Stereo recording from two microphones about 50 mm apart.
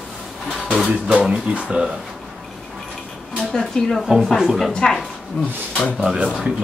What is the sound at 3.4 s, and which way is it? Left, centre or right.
Speech, centre.